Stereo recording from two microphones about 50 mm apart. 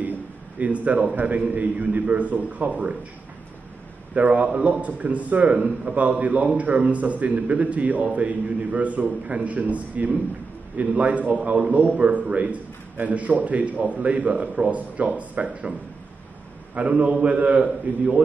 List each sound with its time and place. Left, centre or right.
0.6 s a man's voice: right
4.1 s a man's voice: right
16.7 s a man's voice: right